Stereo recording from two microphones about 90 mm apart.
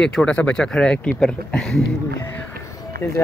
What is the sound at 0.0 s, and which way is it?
Speech, 10° left (ahead or behind).